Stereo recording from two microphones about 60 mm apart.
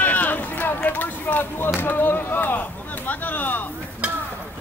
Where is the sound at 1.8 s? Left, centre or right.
Left.